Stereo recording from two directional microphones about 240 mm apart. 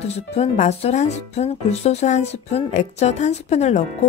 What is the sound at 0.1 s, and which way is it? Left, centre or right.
Speech, left.